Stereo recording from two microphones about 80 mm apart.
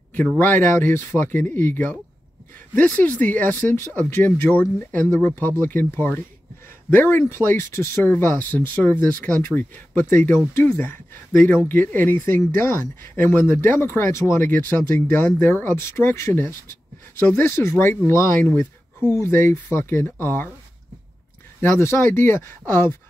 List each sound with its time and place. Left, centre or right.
0.4 s speech: left
19.1 s speech: left
21.5 s speech: left